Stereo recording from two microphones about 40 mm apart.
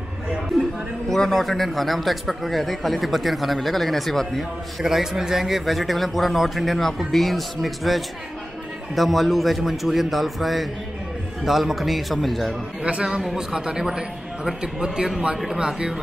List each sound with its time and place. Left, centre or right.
0.5 s speech: centre
4.8 s speech: centre
12.8 s a man's voice: right
13.2 s speech: centre
13.5 s a man's voice: centre
15.3 s speech: centre